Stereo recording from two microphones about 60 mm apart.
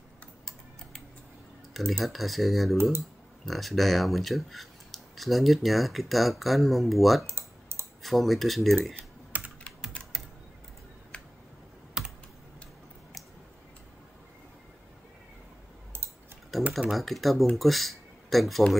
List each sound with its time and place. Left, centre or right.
1.9 s speech: centre
7.2 s typing: right
8.0 s speech: centre
9.3 s computer keyboard: right
11.1 s a sound: centre
12.0 s computer keyboard: centre
16.5 s typing: centre
16.9 s speech: centre